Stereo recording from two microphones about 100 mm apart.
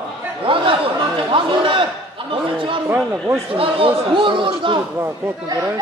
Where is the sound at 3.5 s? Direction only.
65° right (ahead or behind).